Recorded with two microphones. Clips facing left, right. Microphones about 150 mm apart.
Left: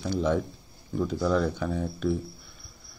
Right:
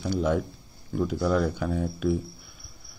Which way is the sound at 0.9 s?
5° right (ahead or behind).